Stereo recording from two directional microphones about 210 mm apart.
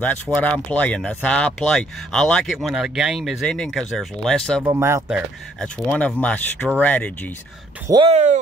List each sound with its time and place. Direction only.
0.0 s speech: 5° left (ahead or behind)
4.6 s speech: 15° right (ahead or behind)
5.6 s speech: 5° left (ahead or behind)
7.9 s speech: 25° right (ahead or behind)